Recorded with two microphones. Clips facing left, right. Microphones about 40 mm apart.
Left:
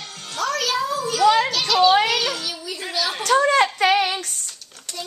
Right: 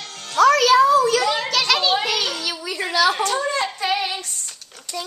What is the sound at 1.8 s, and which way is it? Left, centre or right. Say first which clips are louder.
Music: left 4 dB; left.